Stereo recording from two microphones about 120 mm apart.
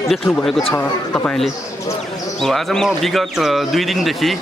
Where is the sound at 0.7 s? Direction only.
15° left (ahead or behind).